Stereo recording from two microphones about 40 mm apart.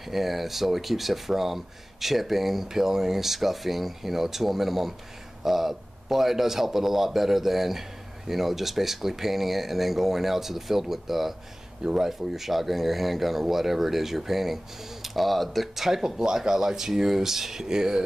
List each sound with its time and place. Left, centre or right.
0.0 s speech: centre
12.1 s speech: centre